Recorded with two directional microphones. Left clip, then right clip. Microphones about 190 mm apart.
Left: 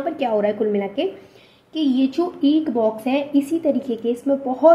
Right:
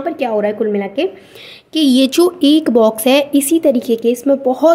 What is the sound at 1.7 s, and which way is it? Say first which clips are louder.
Speech: right 8 dB; 45° right (ahead or behind).